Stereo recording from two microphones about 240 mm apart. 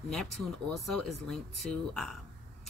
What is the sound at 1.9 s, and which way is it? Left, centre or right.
Speech, centre.